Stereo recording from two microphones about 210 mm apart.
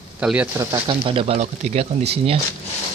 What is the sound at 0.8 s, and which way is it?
Speech, 25° right (ahead or behind).